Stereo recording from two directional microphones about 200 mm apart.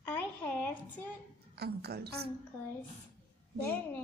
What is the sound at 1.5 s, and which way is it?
Speech, 55° right (ahead or behind).